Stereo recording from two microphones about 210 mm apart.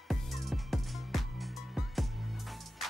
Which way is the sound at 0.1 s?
Centre (ahead or behind).